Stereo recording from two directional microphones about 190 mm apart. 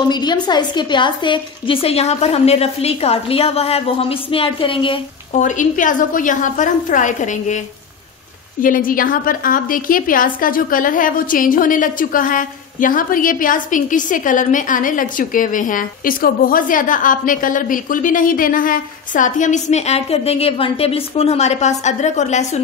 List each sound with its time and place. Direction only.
0.1 s a woman's voice: 20° left (ahead or behind)
5.3 s a woman's voice: 40° left (ahead or behind)